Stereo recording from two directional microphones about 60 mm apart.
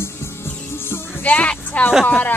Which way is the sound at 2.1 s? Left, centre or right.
Left.